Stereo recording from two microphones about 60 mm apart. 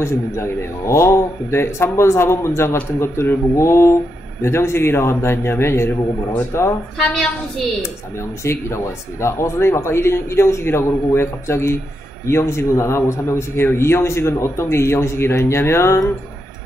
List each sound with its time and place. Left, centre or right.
0.0 s a man's voice: left
7.0 s a woman's voice: centre
8.5 s a man's voice: left